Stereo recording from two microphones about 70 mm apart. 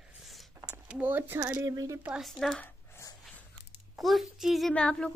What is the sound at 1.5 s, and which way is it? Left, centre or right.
Speech, right.